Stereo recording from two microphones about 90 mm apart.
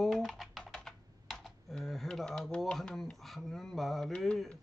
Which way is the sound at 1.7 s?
Centre (ahead or behind).